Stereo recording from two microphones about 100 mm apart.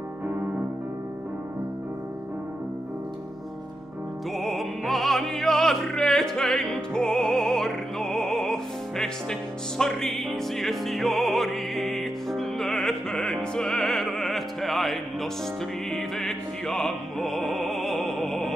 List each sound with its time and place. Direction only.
0.3 s music: 15° right (ahead or behind)
4.4 s opera: centre (ahead or behind)
15.9 s music: centre (ahead or behind)